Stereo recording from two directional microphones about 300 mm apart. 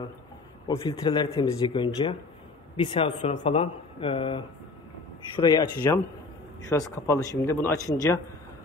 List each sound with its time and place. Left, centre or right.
0.7 s speech: centre